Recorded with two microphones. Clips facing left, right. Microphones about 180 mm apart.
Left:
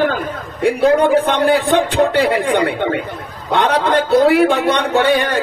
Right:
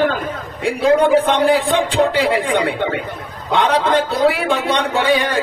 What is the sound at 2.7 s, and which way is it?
Speech, 55° left (ahead or behind).